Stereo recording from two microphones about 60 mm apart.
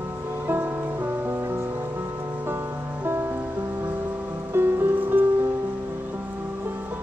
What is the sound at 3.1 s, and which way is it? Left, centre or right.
Music, right.